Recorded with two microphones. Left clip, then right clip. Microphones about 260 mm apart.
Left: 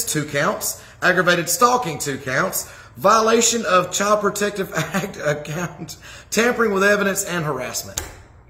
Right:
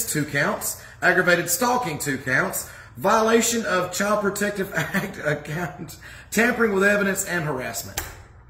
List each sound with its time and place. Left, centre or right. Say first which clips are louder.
0.1 s a man's voice: left 2 dB; centre